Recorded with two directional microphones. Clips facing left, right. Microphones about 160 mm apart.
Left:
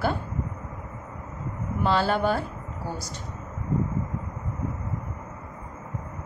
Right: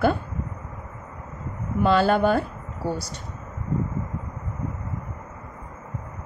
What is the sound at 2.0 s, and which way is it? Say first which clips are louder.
Speech: right 5 dB; 55° right (ahead or behind).